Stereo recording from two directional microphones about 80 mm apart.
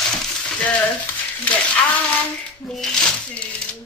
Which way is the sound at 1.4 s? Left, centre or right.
Centre.